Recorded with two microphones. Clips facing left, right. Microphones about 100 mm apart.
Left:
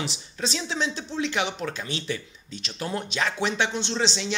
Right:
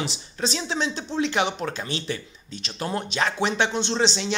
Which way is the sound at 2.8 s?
45° right (ahead or behind).